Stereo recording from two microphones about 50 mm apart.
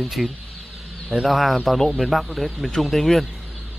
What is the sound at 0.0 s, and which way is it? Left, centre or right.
Speech, centre.